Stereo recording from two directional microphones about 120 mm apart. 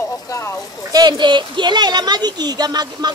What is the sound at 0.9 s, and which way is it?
Speech, 35° right (ahead or behind).